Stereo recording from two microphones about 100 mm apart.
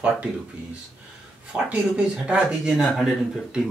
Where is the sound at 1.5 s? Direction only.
10° right (ahead or behind).